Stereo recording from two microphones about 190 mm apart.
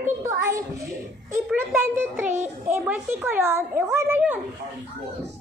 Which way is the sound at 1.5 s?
Centre (ahead or behind).